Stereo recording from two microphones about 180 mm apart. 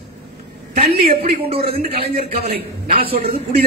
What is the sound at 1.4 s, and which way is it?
Speech, 30° right (ahead or behind).